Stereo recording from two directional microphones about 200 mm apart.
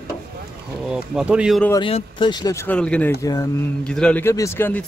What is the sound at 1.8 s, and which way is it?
Speech, 25° left (ahead or behind).